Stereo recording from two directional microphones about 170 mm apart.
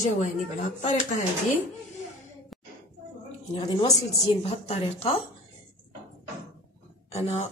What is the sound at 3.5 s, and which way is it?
Speech, 25° left (ahead or behind).